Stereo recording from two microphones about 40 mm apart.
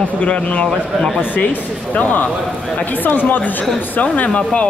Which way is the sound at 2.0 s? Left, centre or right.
Left.